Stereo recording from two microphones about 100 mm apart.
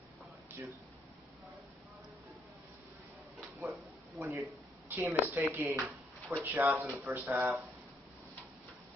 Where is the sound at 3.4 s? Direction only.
Centre (ahead or behind).